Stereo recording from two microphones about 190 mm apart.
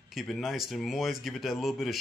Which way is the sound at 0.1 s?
Centre (ahead or behind).